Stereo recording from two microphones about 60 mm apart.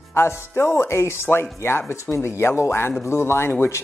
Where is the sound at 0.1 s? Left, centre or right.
Left.